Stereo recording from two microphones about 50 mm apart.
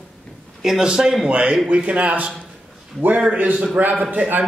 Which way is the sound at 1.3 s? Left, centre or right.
Right.